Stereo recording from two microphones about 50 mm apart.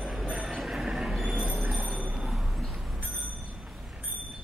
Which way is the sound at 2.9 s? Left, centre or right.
Right.